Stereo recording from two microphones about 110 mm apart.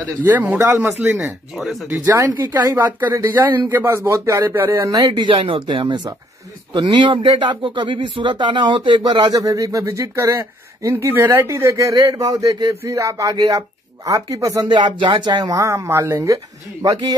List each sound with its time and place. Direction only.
0.2 s speech: 15° right (ahead or behind)
1.6 s speech: 5° right (ahead or behind)
1.9 s speech: 25° right (ahead or behind)
5.1 s speech: 50° right (ahead or behind); by 14.7 s 30° right (ahead or behind)
14.7 s speech: 45° right (ahead or behind); by 16.3 s 25° right (ahead or behind)